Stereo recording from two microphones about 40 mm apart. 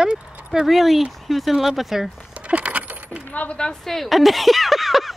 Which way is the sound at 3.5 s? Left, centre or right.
Left.